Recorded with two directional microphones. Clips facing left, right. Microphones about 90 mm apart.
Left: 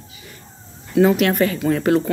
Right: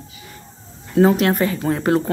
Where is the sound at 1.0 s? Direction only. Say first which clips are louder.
Even; 35° right (ahead or behind).